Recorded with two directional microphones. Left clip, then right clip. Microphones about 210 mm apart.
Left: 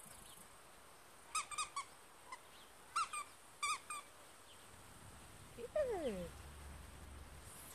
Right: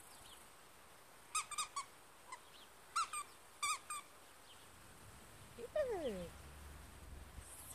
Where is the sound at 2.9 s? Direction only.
20° right (ahead or behind).